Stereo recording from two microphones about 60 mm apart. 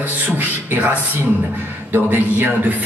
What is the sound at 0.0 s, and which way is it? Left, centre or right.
A man's voice, right.